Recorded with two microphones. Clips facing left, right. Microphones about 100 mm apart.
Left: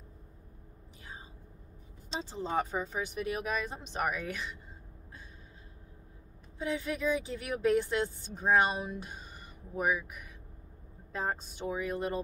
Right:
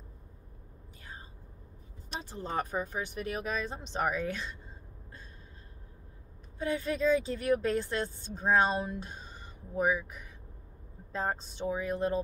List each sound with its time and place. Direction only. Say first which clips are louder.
2.1 s speech: left 2 dB; 15° left (ahead or behind)
6.6 s speech: right 3 dB; 15° left (ahead or behind)
11.1 s speech: right 1 dB; 5° left (ahead or behind)